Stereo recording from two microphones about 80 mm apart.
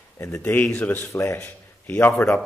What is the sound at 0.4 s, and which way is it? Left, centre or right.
A man's voice, centre.